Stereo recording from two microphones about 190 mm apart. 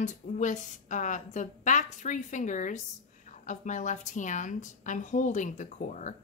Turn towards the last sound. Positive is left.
turn(degrees=40)  # may be behind; listen again after turning